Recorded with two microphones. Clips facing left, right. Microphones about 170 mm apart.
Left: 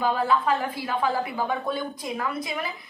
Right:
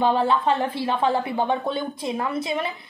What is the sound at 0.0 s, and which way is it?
A woman's voice, 30° right (ahead or behind).